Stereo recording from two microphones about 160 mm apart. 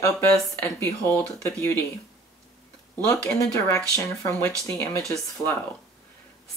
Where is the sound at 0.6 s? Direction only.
15° left (ahead or behind).